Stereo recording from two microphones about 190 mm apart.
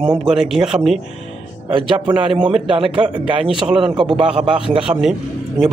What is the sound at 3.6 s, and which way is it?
Speech, 5° right (ahead or behind).